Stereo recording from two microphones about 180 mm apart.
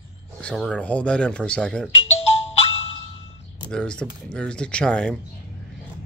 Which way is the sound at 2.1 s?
35° left (ahead or behind).